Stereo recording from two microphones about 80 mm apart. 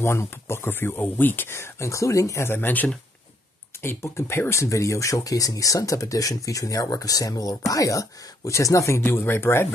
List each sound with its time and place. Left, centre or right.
0.0 s speech: left
2.4 s speech: left
9.0 s speech: left